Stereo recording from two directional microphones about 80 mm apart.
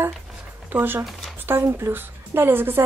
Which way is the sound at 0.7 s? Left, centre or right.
Right.